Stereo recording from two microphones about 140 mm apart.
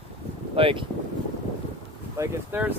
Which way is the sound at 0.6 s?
40° right (ahead or behind).